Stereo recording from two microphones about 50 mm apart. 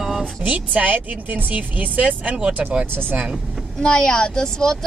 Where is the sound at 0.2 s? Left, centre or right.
Right.